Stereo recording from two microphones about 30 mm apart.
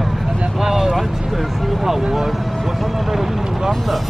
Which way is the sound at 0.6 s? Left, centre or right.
Centre.